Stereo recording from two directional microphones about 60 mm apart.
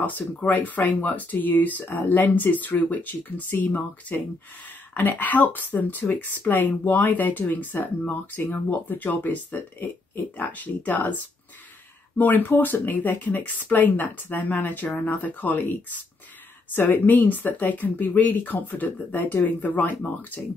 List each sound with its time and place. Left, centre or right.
0.0 s speech: left
12.2 s speech: left